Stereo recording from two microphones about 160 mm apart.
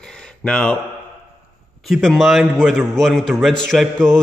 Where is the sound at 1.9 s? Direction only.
Centre (ahead or behind).